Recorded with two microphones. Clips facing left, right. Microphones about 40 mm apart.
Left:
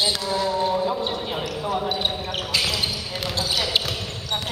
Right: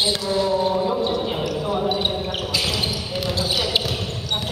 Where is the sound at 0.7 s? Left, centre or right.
Centre.